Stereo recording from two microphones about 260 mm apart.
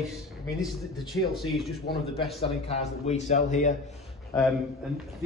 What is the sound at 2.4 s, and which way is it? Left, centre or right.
A man's voice, left.